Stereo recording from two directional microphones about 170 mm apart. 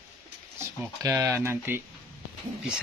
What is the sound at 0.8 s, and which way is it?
Speech, 20° right (ahead or behind).